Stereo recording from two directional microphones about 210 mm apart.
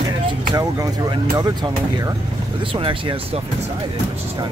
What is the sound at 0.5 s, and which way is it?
Speech, 20° right (ahead or behind).